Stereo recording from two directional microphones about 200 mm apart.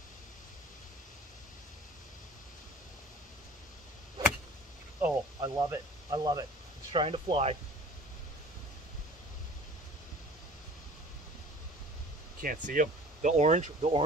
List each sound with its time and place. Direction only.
5.0 s a sound: 15° right (ahead or behind)
6.9 s speech: 30° right (ahead or behind)
12.4 s speech: 45° right (ahead or behind)